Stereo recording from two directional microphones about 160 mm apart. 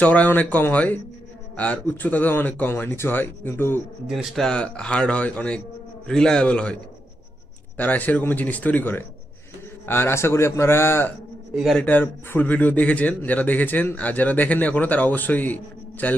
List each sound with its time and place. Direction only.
0.0 s a man's voice: 10° left (ahead or behind)
4.1 s a man's voice: centre (ahead or behind); by 11.1 s 15° left (ahead or behind)
11.5 s a man's voice: centre (ahead or behind)